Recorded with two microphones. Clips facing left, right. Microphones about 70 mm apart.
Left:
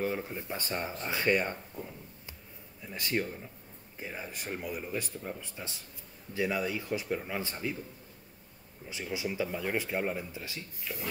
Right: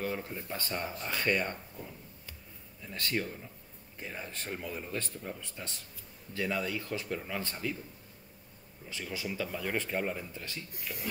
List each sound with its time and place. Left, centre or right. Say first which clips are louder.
0.0 s speech: left 3 dB; centre
8.8 s speech: left 3 dB; centre
10.9 s a sound: left 3 dB; centre